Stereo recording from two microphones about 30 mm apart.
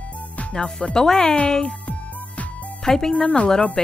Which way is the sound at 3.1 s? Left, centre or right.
Left.